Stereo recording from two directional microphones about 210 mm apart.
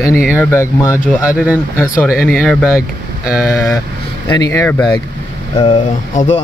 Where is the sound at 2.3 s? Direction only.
5° left (ahead or behind).